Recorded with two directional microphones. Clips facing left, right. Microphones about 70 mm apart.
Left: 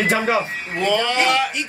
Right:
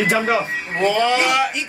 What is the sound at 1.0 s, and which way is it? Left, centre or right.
Speech, centre.